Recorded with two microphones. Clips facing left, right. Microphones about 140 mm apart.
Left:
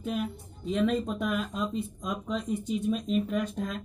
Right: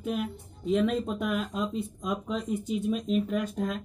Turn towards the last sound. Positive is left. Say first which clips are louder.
# right 1 dB
turn(degrees=0)  # may be behind; listen again after turning